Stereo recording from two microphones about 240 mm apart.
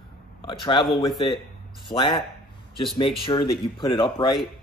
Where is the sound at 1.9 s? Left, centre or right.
Centre.